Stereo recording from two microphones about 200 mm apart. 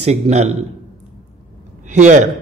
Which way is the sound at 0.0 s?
35° right (ahead or behind).